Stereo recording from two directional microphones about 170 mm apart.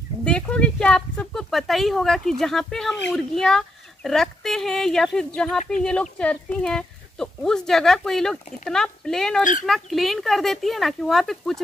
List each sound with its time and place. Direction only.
0.2 s speech: 5° left (ahead or behind)
9.4 s speech: 50° left (ahead or behind)
9.7 s speech: centre (ahead or behind)